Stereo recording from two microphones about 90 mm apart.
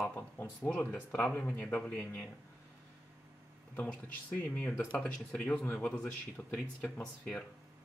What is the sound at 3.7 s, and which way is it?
Speech, 20° left (ahead or behind).